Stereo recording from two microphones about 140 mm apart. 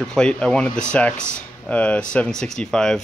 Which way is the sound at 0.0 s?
5° left (ahead or behind).